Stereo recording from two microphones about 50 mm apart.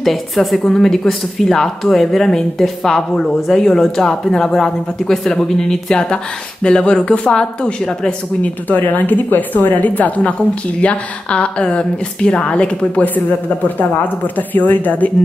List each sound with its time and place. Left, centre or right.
0.0 s a woman's voice: centre
8.4 s a woman's voice: left
14.5 s speech: left